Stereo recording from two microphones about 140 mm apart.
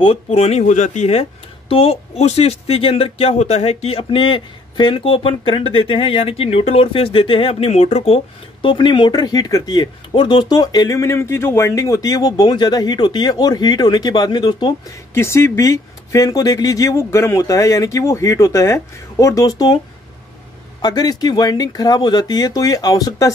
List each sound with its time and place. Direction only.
0.0 s speech: 40° left (ahead or behind)
8.6 s speech: 35° left (ahead or behind)
15.1 s speech: 20° left (ahead or behind)
20.8 s speech: 30° left (ahead or behind)